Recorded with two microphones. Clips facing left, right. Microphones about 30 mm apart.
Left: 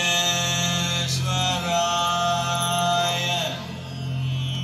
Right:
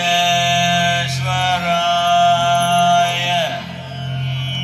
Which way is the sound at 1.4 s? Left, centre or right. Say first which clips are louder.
Right 7 dB; right.